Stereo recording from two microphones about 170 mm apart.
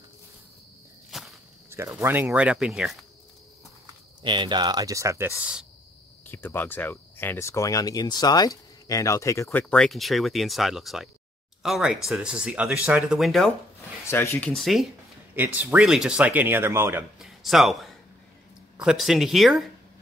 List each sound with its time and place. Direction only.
1.1 s cricket: centre (ahead or behind)
1.7 s speech: 15° right (ahead or behind)
4.2 s speech: 30° right (ahead or behind); by 5.7 s 5° right (ahead or behind)
6.2 s speech: 10° left (ahead or behind)
14.0 s speech: 15° left (ahead or behind)
14.5 s speech: centre (ahead or behind)
15.3 s speech: 10° right (ahead or behind)
17.2 s a sound: centre (ahead or behind)
18.8 s speech: 5° right (ahead or behind)